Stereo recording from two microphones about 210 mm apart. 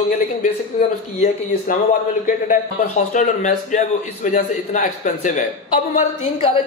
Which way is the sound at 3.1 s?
35° left (ahead or behind).